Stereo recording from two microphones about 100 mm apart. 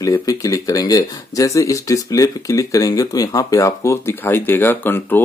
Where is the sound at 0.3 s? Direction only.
35° left (ahead or behind).